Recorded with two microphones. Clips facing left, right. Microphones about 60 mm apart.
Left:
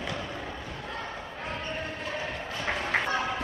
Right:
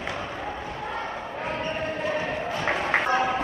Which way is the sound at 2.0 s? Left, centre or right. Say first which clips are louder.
Right 7 dB; right.